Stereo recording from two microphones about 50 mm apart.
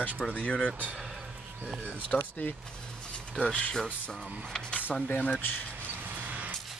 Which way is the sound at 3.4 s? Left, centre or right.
Left.